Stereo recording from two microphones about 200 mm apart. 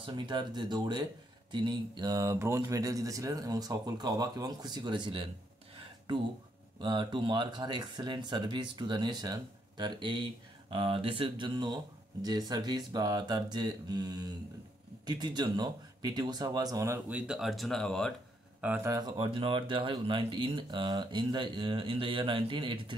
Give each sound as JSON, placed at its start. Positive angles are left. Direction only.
{"t": 0.0, "sound": "speech", "side_deg": -25}
{"t": 6.8, "sound": "speech", "side_deg": -25}
{"t": 18.6, "sound": "speech", "side_deg": -10}
{"t": 18.9, "sound": "speech", "side_deg": -25}